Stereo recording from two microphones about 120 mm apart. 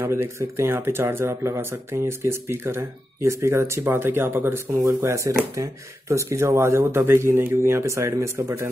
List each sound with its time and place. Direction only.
0.0 s speech: 20° right (ahead or behind)